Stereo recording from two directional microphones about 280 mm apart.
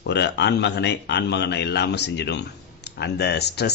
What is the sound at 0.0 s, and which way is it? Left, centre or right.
A man's voice, left.